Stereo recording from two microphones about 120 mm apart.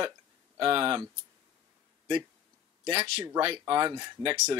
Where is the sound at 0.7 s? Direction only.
45° right (ahead or behind).